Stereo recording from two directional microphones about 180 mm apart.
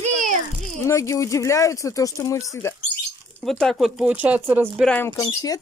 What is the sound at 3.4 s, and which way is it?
Speech, centre (ahead or behind).